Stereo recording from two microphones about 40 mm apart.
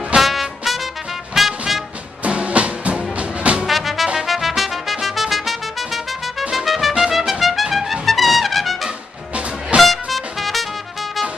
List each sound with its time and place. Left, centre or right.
0.2 s trumpet: centre
1.4 s music: centre
2.2 s music: right
3.6 s music: centre
7.1 s trumpet: centre
9.3 s music: right
9.8 s music: centre